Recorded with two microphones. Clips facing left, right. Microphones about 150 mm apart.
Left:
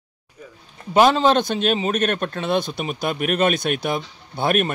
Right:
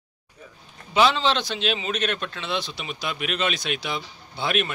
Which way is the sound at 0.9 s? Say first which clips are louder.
Left 5 dB; 50° left (ahead or behind).